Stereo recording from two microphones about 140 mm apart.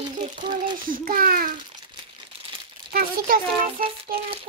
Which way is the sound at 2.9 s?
90° right.